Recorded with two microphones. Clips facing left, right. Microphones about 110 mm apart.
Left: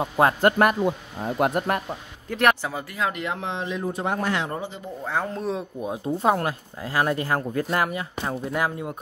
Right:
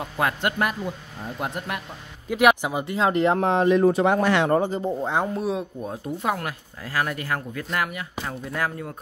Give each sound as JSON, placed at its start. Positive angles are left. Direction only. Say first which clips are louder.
{"t": 0.0, "sound": "speech", "louder": "left 6 dB", "side_deg": 30}
{"t": 1.2, "sound": "speech", "louder": "left 8 dB", "side_deg": 65}
{"t": 2.2, "sound": "speech", "louder": "right 3 dB", "side_deg": -10}
{"t": 3.3, "sound": "speech", "louder": "right 10 dB", "side_deg": -50}
{"t": 3.8, "sound": "speech", "louder": "right 7 dB", "side_deg": -90}
{"t": 4.6, "sound": "speech", "louder": "right 10 dB", "side_deg": -40}
{"t": 5.0, "sound": "speech", "louder": "left 1 dB", "side_deg": -20}
{"t": 5.3, "sound": "speech", "louder": "right 2 dB", "side_deg": -5}
{"t": 6.0, "sound": "speech", "louder": "left 5 dB", "side_deg": 30}